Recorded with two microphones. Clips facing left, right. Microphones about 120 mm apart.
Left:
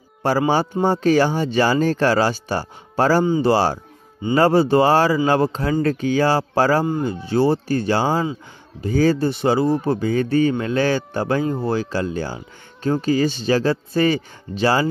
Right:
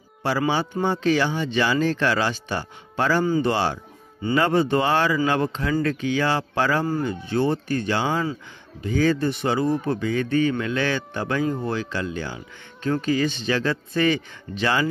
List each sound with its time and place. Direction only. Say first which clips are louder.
0.2 s speech: left 5 dB; 45° left (ahead or behind)